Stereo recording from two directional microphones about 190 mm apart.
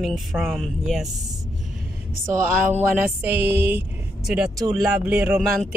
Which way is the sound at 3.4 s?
60° right (ahead or behind).